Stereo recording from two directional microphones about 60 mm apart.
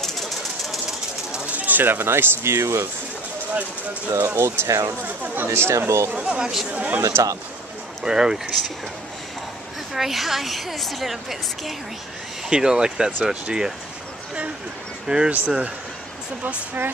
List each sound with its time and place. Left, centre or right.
1.3 s speech: right
4.4 s speech: right
4.6 s speech: right
5.0 s speech: right
5.5 s speech: right
6.1 s speech: centre
7.0 s speech: right
8.0 s speech: centre
9.9 s a woman's voice: centre
15.0 s speech: centre
15.3 s speech: right